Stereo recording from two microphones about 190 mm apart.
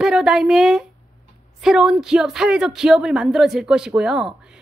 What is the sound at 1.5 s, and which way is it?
Speech, centre (ahead or behind).